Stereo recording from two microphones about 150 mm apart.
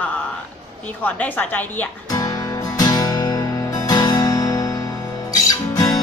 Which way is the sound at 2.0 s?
25° left (ahead or behind).